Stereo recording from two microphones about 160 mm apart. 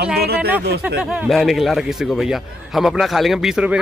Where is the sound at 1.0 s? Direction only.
5° right (ahead or behind).